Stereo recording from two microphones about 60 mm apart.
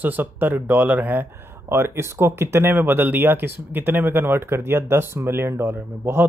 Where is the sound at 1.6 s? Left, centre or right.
Right.